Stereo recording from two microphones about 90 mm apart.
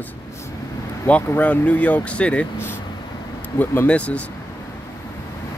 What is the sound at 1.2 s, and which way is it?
Speech, 15° left (ahead or behind).